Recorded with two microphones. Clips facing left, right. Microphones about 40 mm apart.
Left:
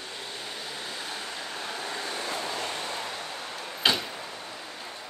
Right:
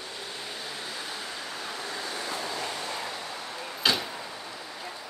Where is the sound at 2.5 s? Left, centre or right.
Left.